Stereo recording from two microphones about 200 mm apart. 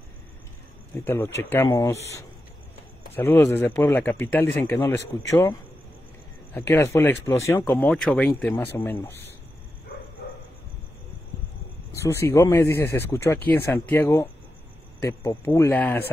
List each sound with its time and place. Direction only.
1.0 s speech: 15° left (ahead or behind)
11.9 s speech: 15° left (ahead or behind)